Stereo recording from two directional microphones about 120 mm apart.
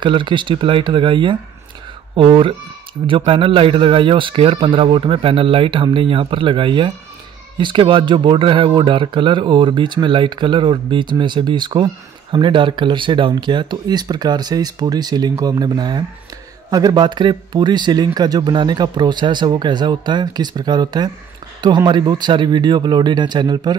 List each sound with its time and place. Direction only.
0.0 s speech: 40° right (ahead or behind)